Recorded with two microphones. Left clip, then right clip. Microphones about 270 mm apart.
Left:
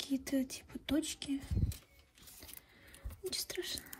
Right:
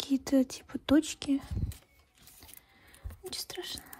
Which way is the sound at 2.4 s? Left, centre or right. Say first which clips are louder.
Even; centre.